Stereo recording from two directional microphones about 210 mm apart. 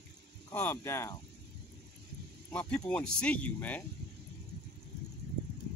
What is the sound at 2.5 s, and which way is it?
Speech, 5° left (ahead or behind).